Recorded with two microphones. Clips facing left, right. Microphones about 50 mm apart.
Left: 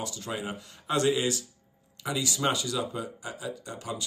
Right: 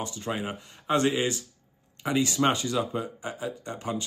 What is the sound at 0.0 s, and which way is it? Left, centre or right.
Speech, right.